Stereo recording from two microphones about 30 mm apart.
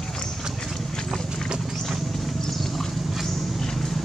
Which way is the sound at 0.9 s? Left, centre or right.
Centre.